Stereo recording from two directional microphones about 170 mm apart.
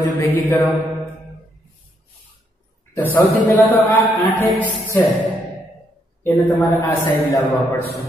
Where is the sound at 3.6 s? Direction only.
10° left (ahead or behind).